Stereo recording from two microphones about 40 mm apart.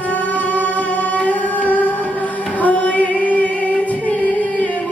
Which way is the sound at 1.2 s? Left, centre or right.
Left.